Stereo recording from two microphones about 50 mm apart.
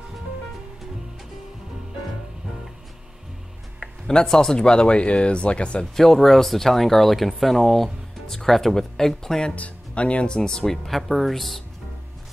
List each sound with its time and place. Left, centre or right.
4.1 s speech: centre
5.9 s speech: centre
9.6 s speech: left; by 11.6 s centre